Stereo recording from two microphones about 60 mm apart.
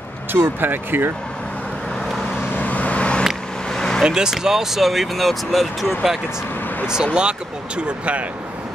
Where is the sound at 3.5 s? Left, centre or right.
Centre.